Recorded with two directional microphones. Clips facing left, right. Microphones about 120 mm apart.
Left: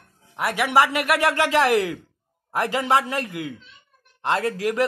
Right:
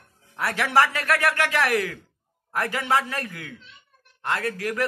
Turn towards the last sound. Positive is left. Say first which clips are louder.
# left 4 dB
turn(degrees=20)  # may be behind; listen again after turning